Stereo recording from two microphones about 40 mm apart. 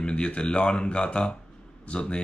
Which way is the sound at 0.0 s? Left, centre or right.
Left.